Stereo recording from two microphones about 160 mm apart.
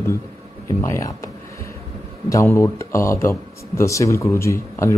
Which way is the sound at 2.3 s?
15° left (ahead or behind).